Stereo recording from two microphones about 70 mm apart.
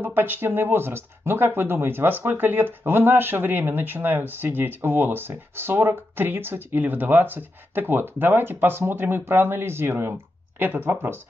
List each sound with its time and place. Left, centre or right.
0.0 s speech: right